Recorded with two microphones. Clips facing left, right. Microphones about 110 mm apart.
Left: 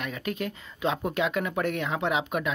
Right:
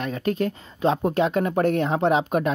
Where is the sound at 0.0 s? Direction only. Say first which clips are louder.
Right 7 dB; 35° right (ahead or behind).